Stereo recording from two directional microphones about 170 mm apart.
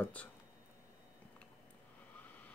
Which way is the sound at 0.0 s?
10° left (ahead or behind).